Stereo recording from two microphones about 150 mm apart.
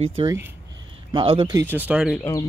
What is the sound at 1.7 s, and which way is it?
Speech, 10° right (ahead or behind).